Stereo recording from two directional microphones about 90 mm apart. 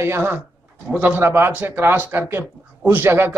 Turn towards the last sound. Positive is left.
turn(degrees=-25)  # may be behind; listen again after turning